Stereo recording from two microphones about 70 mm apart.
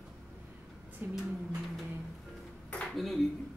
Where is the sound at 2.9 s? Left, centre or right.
Centre.